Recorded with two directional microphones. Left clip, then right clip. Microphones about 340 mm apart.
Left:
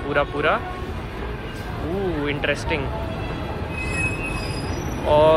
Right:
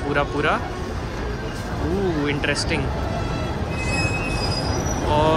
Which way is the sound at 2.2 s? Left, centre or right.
Centre.